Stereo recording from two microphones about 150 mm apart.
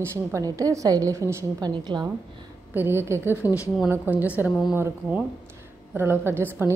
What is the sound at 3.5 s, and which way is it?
Speech, 20° left (ahead or behind).